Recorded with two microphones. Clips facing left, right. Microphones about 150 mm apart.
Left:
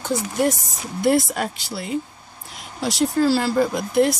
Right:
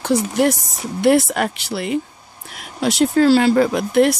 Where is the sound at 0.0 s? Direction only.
75° right (ahead or behind).